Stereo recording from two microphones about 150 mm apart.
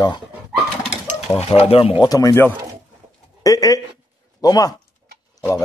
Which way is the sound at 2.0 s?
25° left (ahead or behind).